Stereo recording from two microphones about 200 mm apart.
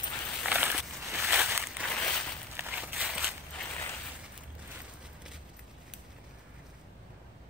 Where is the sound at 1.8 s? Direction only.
10° left (ahead or behind).